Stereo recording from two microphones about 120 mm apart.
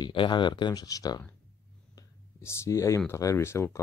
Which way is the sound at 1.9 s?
25° left (ahead or behind).